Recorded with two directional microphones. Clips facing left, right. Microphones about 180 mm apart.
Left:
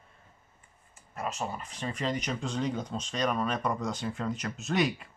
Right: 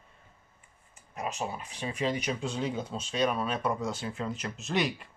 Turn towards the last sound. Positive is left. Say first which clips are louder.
# left 2 dB
turn(degrees=0)  # may be behind; listen again after turning